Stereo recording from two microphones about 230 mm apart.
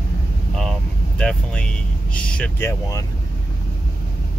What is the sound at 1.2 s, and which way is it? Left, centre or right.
Speech, centre.